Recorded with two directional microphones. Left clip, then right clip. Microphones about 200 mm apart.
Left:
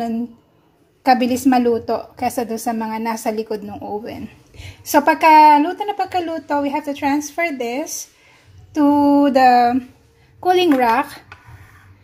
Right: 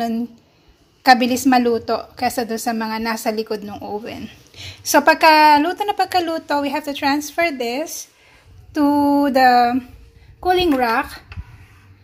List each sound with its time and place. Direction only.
1.0 s a woman's voice: 5° left (ahead or behind)